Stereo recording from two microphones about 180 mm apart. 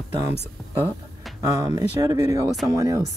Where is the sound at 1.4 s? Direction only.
20° right (ahead or behind).